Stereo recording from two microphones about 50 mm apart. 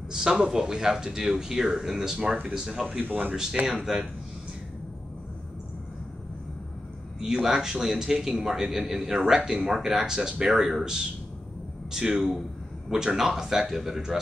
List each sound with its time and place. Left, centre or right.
0.1 s speech: centre
3.0 s speech: right
3.8 s speech: centre
7.4 s speech: centre